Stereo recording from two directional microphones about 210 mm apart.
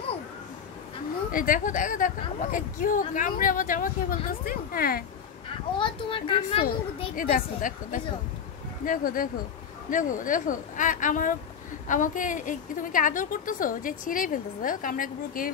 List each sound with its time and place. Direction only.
1.3 s a woman's voice: 40° left (ahead or behind)
5.8 s a child's voice: 25° left (ahead or behind)
7.2 s a woman's voice: 40° left (ahead or behind)